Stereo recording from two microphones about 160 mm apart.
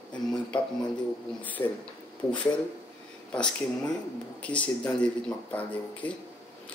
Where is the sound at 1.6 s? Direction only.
20° left (ahead or behind).